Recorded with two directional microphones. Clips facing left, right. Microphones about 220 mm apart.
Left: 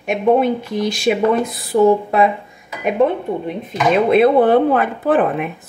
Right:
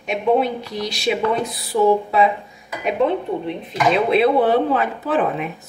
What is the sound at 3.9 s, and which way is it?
Speech, 50° left (ahead or behind).